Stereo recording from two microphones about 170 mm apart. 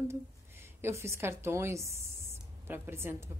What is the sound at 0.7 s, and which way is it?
A woman's voice, 15° right (ahead or behind).